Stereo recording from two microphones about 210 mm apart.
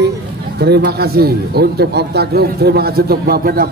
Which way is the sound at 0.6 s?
50° right (ahead or behind).